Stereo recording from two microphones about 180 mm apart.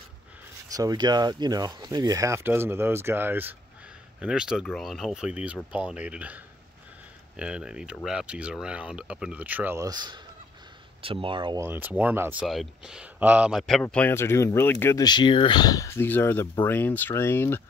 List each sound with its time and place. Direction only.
0.7 s speech: 20° right (ahead or behind)
11.6 s speech: 10° right (ahead or behind)
13.8 s speech: 10° left (ahead or behind)